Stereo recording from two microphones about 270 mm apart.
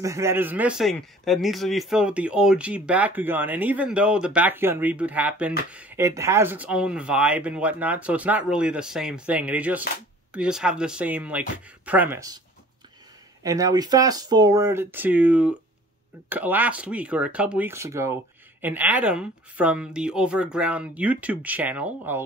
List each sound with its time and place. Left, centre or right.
0.0 s a man's voice: centre
13.4 s a man's voice: centre